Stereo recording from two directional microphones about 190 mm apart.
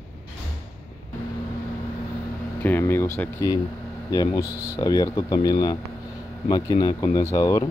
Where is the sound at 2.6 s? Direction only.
10° left (ahead or behind).